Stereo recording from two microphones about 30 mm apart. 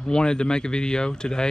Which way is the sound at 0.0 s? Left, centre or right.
Left.